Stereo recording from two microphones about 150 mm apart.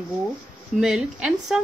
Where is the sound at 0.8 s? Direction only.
5° right (ahead or behind).